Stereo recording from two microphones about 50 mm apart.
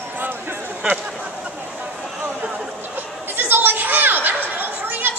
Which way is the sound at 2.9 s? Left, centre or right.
Right.